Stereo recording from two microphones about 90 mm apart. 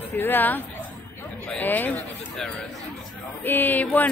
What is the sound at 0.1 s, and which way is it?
A woman's voice, 25° left (ahead or behind).